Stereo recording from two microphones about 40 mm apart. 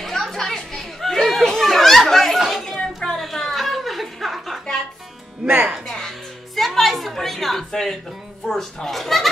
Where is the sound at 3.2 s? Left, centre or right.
Centre.